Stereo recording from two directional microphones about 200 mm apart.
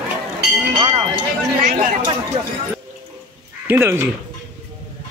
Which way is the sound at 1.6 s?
40° right (ahead or behind).